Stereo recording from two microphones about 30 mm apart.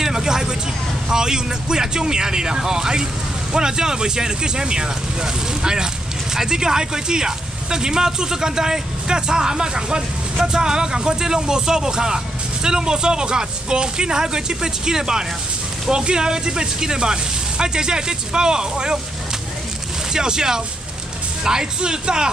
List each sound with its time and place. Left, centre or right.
0.0 s vehicle: centre
1.0 s speech: right
20.1 s speech: right